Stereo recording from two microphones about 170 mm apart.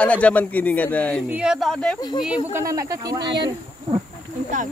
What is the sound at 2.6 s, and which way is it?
Speech, 20° right (ahead or behind).